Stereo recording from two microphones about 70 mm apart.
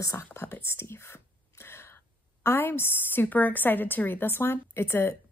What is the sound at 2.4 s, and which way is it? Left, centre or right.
A woman's voice, left.